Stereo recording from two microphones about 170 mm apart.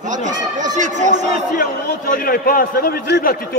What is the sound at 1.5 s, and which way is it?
A man's voice, 55° left (ahead or behind).